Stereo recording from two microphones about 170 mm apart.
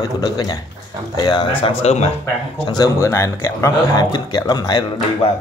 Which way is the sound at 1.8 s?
40° left (ahead or behind).